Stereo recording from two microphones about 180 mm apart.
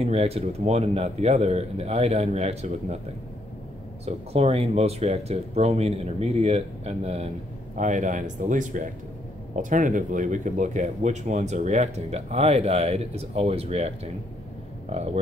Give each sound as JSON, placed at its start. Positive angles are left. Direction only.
{"t": 0.0, "sound": "speech", "side_deg": -35}
{"t": 4.0, "sound": "speech", "side_deg": -35}